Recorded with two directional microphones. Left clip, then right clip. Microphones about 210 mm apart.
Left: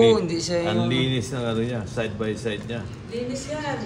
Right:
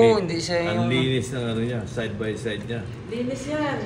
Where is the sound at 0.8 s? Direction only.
35° left (ahead or behind).